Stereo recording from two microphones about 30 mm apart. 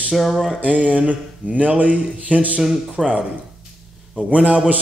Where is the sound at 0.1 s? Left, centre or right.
Centre.